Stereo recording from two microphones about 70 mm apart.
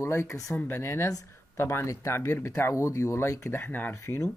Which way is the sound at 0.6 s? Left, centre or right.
Left.